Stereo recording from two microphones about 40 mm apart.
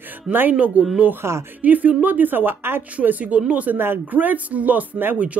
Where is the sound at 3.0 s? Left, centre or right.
Right.